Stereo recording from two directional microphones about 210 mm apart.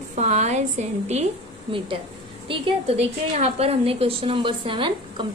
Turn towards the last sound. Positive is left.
turn(degrees=-25)  # may be behind; listen again after turning